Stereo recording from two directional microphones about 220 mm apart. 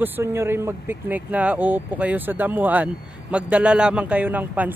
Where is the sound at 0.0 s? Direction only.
10° right (ahead or behind).